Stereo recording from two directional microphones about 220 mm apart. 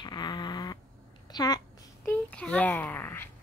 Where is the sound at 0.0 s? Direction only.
20° left (ahead or behind).